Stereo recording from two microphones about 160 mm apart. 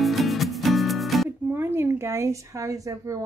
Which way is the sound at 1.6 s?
15° right (ahead or behind).